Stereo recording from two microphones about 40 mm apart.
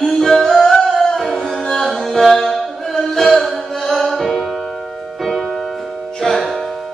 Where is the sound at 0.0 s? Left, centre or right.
Centre.